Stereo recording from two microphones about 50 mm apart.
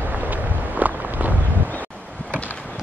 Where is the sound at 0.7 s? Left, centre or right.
Right.